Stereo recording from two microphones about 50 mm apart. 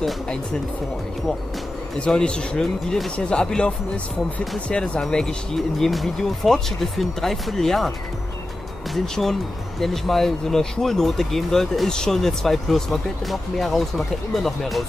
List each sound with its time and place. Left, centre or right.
2.0 s speech: centre
5.1 s speech: centre
8.9 s speech: centre